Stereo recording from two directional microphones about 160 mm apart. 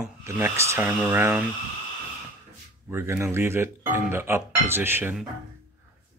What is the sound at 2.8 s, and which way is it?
Speech, 15° right (ahead or behind).